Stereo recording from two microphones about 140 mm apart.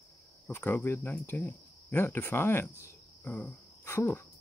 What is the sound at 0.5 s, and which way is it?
Speech, 15° left (ahead or behind).